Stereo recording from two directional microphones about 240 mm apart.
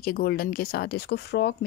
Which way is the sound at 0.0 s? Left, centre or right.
Left.